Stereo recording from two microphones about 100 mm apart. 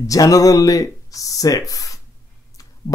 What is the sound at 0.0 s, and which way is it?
Speech, 35° left (ahead or behind).